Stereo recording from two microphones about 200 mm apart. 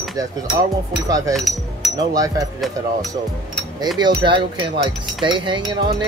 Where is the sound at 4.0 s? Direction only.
25° right (ahead or behind).